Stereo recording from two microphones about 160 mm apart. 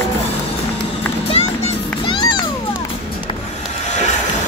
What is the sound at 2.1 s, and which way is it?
Music, 30° left (ahead or behind).